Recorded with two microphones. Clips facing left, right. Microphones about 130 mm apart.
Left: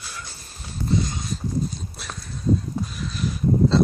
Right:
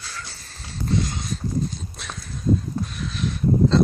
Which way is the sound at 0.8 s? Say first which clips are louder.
Even; 5° left (ahead or behind).